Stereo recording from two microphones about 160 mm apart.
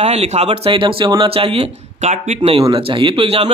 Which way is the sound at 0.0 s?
40° right (ahead or behind).